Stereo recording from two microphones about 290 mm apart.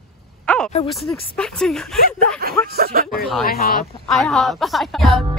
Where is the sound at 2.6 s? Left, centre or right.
Right.